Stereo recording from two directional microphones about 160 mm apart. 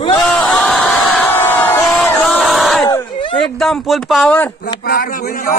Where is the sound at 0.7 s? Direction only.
Centre (ahead or behind).